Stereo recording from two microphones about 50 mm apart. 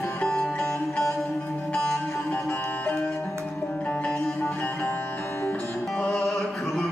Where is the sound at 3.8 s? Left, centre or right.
Left.